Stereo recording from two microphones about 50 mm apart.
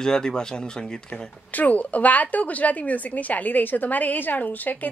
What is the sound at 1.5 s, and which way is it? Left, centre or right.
A woman's voice, left.